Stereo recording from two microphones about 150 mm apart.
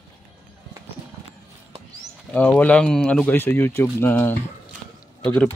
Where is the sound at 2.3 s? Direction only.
10° left (ahead or behind).